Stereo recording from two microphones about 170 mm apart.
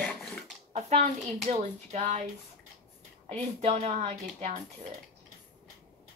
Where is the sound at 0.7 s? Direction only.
40° right (ahead or behind).